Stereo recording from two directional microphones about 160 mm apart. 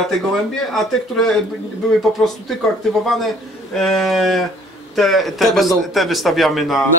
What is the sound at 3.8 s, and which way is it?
Speech, centre (ahead or behind).